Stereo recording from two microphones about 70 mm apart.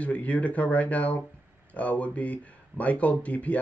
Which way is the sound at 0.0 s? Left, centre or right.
Centre.